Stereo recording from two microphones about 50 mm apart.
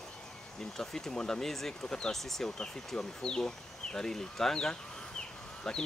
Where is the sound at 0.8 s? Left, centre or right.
Centre.